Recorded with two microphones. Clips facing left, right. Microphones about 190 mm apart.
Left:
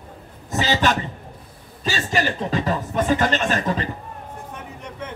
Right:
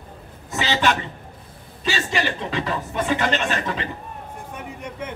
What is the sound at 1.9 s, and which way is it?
Speech, 40° left (ahead or behind).